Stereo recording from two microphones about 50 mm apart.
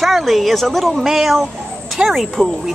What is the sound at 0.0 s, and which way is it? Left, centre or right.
A woman's voice, centre.